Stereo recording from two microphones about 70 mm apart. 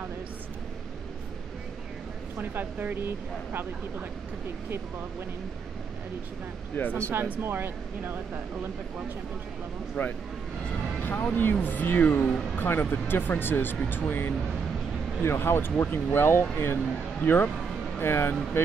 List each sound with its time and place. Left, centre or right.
2.3 s speech: right
6.8 s speech: left
7.1 s speech: right
10.0 s speech: left
11.0 s music: left
11.3 s speech: left